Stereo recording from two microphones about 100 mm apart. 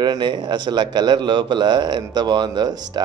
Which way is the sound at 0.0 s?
45° right (ahead or behind).